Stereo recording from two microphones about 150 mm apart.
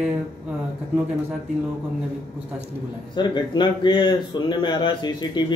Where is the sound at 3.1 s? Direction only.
30° left (ahead or behind).